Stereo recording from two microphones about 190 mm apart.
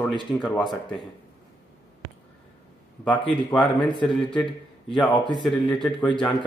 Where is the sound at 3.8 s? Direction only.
25° left (ahead or behind).